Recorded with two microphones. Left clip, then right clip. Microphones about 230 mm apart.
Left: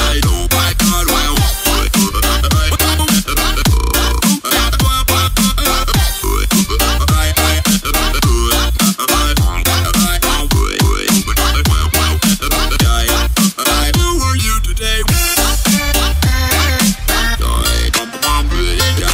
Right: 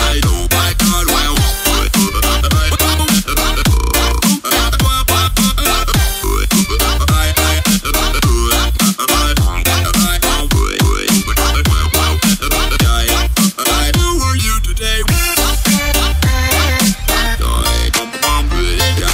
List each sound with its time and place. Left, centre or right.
0.0 s music: centre